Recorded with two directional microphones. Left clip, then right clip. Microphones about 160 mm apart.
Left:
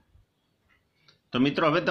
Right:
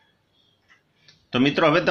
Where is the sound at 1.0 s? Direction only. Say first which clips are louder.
Right 5 dB; 15° left (ahead or behind).